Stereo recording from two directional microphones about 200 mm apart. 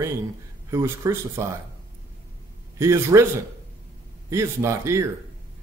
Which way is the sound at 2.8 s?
15° right (ahead or behind).